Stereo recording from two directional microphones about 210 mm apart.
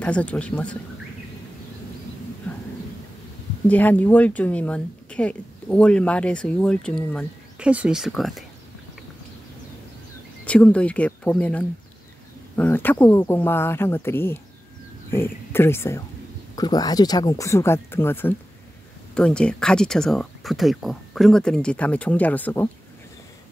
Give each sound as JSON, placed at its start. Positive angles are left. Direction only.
{"t": 0.0, "sound": "speech", "side_deg": 5}
{"t": 3.6, "sound": "speech", "side_deg": 5}
{"t": 10.4, "sound": "speech", "side_deg": 5}